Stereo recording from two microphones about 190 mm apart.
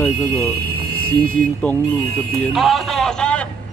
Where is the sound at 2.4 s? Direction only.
Centre (ahead or behind).